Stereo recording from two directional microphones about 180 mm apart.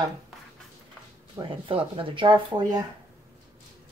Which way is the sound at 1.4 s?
30° right (ahead or behind).